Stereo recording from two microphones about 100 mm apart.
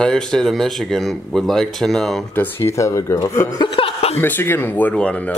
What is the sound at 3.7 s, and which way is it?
Chuckle, 80° left.